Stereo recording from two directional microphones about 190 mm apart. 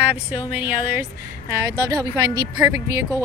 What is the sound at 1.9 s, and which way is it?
A woman's voice, 20° right (ahead or behind).